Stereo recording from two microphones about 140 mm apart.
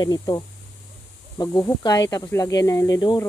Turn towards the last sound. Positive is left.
turn(degrees=30)  # may be behind; listen again after turning